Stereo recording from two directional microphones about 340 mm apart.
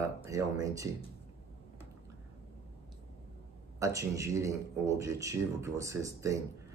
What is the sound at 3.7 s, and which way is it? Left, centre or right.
Speech, centre.